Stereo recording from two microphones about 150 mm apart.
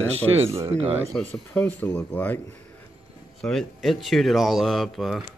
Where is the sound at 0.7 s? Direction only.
45° right (ahead or behind).